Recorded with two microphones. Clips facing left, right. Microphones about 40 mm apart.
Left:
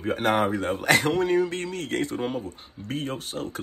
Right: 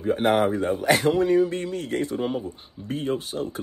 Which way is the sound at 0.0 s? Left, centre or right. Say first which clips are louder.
Right 3 dB; left.